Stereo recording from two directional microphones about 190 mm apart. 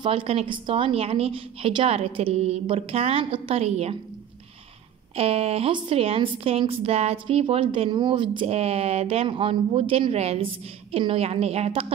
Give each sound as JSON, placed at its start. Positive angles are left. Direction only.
{"t": 0.0, "sound": "speech", "side_deg": -30}
{"t": 5.1, "sound": "speech", "side_deg": -30}